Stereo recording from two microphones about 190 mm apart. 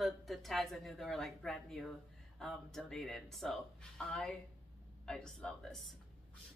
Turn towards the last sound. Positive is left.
turn(degrees=0)  # may be behind; listen again after turning